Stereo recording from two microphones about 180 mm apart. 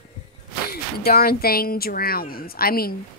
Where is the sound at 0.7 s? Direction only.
60° left (ahead or behind).